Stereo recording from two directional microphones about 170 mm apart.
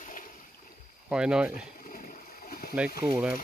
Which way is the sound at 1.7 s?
55° left (ahead or behind).